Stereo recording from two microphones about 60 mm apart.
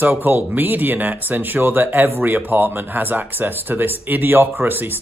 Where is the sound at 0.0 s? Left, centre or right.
Right.